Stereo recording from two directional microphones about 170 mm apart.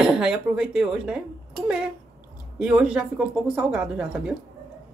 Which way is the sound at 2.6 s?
5° right (ahead or behind).